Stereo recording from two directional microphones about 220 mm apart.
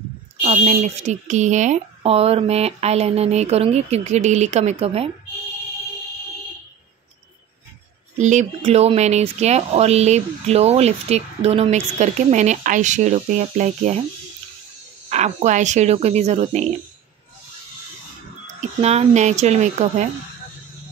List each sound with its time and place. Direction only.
0.4 s speech: 30° right (ahead or behind)
8.2 s speech: 30° right (ahead or behind)
15.0 s speech: 30° right (ahead or behind)
18.8 s speech: 30° right (ahead or behind)